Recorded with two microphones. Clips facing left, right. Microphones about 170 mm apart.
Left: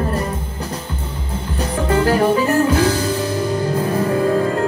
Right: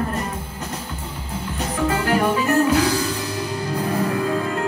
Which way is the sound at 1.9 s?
35° left (ahead or behind).